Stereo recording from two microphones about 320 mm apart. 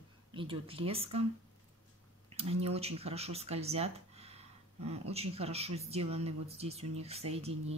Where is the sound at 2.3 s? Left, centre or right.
Centre.